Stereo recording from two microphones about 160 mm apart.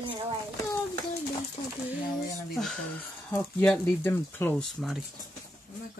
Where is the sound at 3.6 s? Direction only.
10° left (ahead or behind).